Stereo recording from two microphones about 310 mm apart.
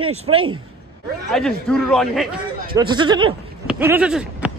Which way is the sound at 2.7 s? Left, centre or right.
Centre.